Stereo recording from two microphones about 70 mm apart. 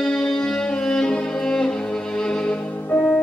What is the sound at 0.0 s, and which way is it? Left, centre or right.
Music, centre.